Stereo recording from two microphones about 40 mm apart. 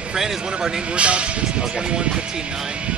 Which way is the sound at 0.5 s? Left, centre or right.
Centre.